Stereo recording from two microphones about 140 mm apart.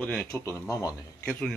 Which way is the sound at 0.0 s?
10° left (ahead or behind).